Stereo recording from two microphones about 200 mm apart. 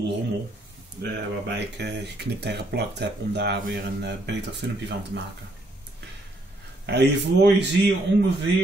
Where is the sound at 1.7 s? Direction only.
60° right (ahead or behind).